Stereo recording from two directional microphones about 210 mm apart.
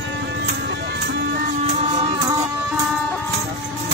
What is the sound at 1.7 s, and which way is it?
Music, 30° right (ahead or behind).